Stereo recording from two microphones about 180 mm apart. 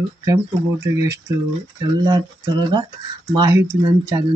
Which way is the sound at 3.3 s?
20° right (ahead or behind).